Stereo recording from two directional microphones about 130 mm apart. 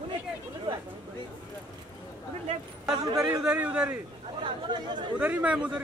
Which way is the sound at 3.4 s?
10° right (ahead or behind).